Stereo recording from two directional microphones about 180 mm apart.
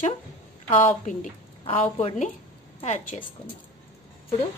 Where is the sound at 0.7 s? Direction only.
45° left (ahead or behind).